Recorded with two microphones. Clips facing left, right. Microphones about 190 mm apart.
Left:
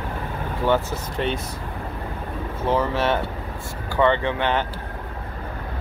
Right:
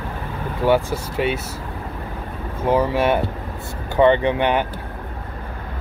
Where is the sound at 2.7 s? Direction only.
10° right (ahead or behind).